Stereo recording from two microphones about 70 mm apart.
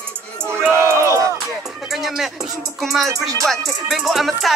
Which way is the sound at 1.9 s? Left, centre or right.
Centre.